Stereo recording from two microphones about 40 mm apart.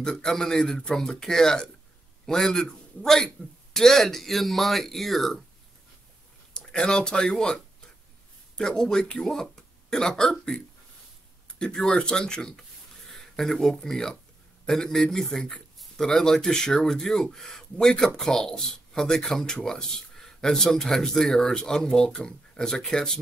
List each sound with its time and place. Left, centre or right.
0.0 s speech: centre
6.5 s speech: left
11.4 s speech: left